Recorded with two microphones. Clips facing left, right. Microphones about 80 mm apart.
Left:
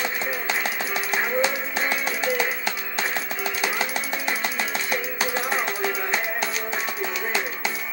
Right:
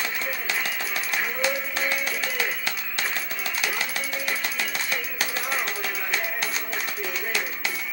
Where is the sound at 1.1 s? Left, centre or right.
Left.